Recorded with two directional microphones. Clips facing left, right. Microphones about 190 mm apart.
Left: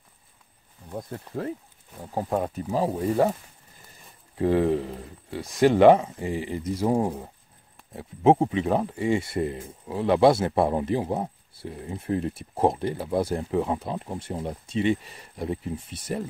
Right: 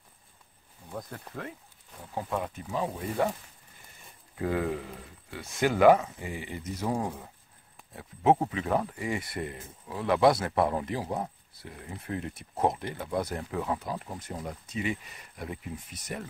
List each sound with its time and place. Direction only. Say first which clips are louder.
0.9 s speech: left 6 dB; 30° left (ahead or behind)
2.1 s speech: left 6 dB; 40° left (ahead or behind)
4.4 s speech: left 8 dB; 30° left (ahead or behind)